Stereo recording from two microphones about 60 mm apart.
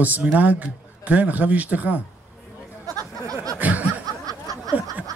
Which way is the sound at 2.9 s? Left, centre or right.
Right.